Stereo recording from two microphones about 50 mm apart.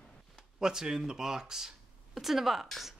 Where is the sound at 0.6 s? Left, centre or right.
Centre.